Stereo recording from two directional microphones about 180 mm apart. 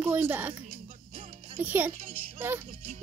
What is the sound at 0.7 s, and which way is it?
Music, 35° right (ahead or behind).